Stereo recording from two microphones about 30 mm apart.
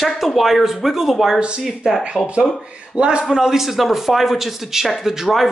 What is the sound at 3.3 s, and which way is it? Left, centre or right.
A man's voice, centre.